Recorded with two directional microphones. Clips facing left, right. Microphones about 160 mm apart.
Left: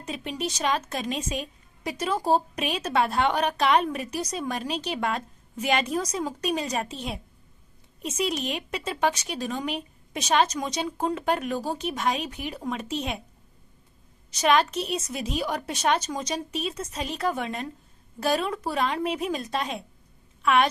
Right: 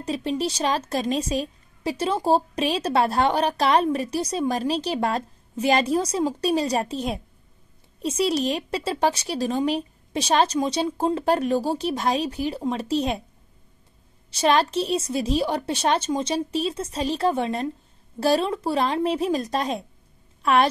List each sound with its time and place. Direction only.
0.0 s a woman's voice: 35° right (ahead or behind)
14.3 s a woman's voice: 30° right (ahead or behind)